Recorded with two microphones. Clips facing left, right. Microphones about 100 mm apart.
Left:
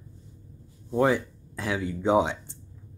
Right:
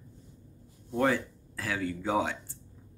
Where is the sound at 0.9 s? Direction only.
15° left (ahead or behind).